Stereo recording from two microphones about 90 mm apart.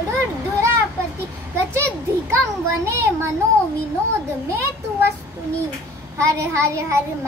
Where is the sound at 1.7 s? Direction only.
30° right (ahead or behind).